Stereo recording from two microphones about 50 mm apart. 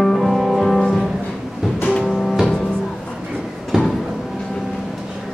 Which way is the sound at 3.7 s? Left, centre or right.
Centre.